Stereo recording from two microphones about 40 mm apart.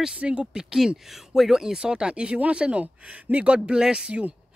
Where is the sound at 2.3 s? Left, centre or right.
Right.